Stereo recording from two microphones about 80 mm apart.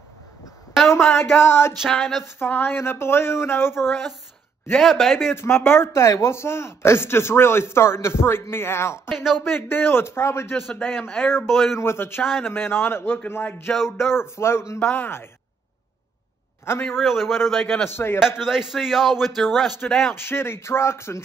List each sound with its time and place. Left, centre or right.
0.9 s speech: left
1.8 s a man's voice: centre
2.2 s speech: left
4.7 s a man's voice: centre
5.3 s a man's voice: left
9.1 s a man's voice: centre
9.4 s speech: left
11.0 s a man's voice: centre
11.4 s a man's voice: centre
11.7 s a man's voice: left
16.9 s a man's voice: centre
17.8 s speech: left
18.4 s a man's voice: centre
20.2 s a man's voice: left